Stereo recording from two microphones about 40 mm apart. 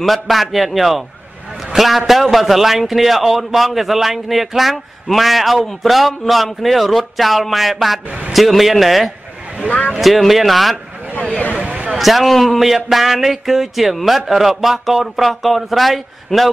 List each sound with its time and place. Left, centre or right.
0.0 s a man's voice: centre
9.7 s speech: left
9.9 s a man's voice: centre
11.5 s a sound: right
12.0 s a man's voice: centre